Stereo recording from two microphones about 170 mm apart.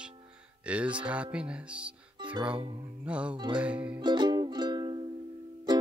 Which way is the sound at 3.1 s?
5° right (ahead or behind).